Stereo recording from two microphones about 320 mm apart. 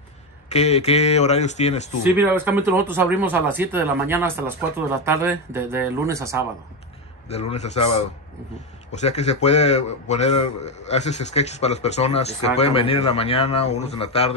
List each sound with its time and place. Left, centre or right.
0.5 s a man's voice: centre
2.1 s speech: centre
7.2 s a man's voice: centre
9.0 s a man's voice: centre